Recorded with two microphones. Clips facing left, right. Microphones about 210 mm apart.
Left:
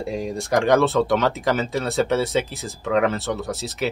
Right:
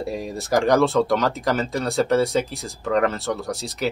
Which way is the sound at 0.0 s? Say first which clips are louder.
Left 1 dB; centre (ahead or behind).